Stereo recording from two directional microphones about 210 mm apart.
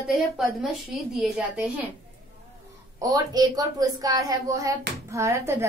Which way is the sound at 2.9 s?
15° right (ahead or behind).